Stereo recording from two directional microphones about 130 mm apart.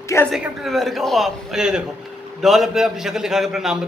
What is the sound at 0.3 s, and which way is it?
A man's voice, centre (ahead or behind).